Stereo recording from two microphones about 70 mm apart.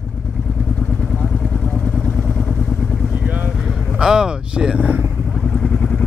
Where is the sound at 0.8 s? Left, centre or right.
Centre.